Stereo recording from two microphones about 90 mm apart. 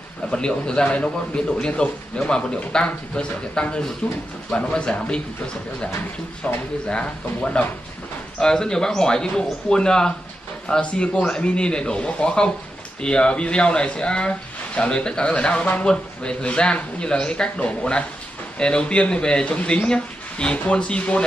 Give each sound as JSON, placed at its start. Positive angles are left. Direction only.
{"t": 0.3, "sound": "a man's voice", "side_deg": 10}
{"t": 6.4, "sound": "a man's voice", "side_deg": 15}